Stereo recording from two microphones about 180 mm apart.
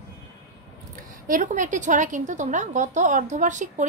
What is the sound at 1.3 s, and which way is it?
A woman's voice, 45° right (ahead or behind).